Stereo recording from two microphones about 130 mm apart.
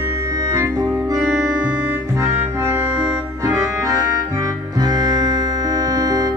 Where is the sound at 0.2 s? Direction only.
25° right (ahead or behind).